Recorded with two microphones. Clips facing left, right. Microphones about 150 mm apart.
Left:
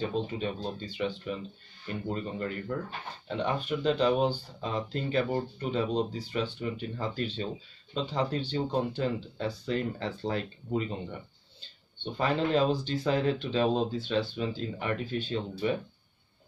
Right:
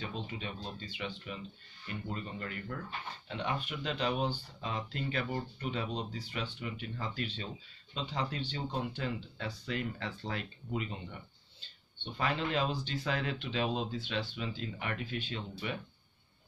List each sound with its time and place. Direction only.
0.0 s speech: 40° left (ahead or behind)